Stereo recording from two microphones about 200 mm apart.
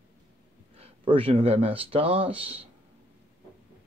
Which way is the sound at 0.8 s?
25° right (ahead or behind).